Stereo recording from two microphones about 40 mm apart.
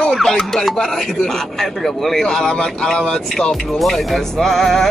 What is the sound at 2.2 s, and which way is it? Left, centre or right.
Speech, centre.